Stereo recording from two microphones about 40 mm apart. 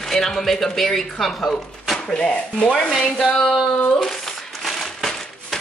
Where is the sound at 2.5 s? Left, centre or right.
Left.